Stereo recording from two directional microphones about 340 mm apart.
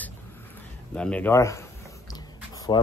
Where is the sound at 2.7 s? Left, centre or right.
Centre.